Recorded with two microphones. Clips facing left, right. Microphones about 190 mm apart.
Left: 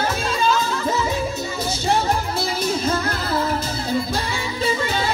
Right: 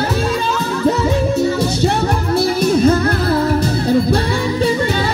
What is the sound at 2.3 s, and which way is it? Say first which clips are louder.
Music: right 9 dB; 65° right (ahead or behind).